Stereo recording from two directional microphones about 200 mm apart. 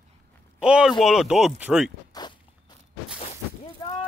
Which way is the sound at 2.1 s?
20° left (ahead or behind).